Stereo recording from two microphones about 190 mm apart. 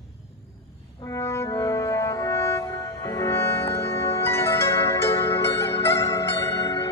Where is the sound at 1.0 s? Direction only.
15° left (ahead or behind).